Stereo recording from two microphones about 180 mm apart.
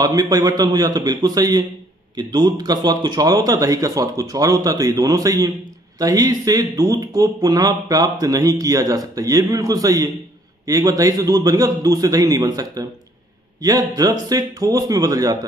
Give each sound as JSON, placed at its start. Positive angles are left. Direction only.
{"t": 0.0, "sound": "speech", "side_deg": -20}